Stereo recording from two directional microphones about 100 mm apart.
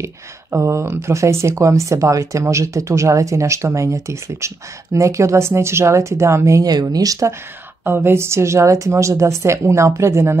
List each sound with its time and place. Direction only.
0.0 s a woman's voice: 30° right (ahead or behind)
7.8 s a woman's voice: 25° right (ahead or behind)